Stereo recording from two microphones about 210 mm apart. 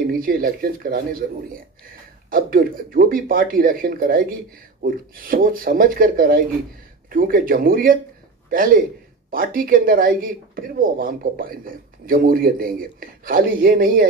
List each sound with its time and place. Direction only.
0.0 s speech: 45° right (ahead or behind)
2.3 s speech: 45° right (ahead or behind)